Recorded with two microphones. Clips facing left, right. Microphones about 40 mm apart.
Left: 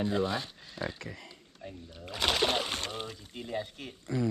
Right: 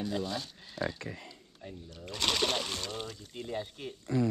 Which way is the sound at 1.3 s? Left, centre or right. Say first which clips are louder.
Left 1 dB; left.